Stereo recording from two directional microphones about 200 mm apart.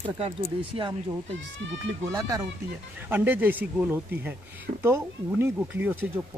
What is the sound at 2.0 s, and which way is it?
Speech, 15° right (ahead or behind).